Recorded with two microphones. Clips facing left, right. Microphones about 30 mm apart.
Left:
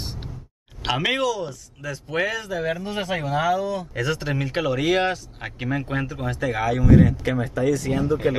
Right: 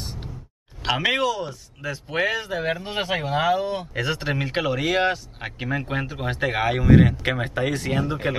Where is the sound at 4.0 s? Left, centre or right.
Centre.